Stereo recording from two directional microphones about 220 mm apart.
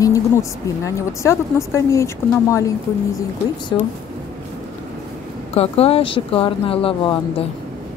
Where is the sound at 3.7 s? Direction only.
20° left (ahead or behind).